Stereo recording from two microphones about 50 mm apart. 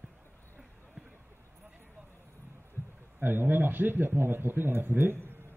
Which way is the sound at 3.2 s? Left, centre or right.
Right.